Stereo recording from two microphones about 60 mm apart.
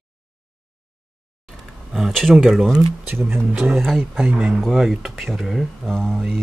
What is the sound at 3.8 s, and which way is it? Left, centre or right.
Speech, centre.